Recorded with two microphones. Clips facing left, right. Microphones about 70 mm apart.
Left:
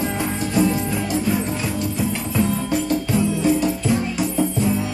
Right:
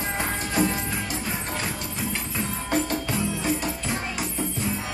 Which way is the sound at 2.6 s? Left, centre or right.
Right.